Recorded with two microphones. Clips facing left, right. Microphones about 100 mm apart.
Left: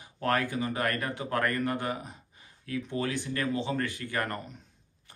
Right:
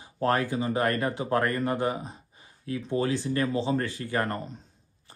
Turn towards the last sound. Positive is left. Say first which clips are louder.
# right 4 dB
turn(degrees=-25)  # may be behind; listen again after turning